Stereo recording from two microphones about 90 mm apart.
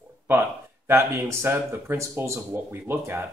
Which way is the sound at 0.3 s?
30° right (ahead or behind).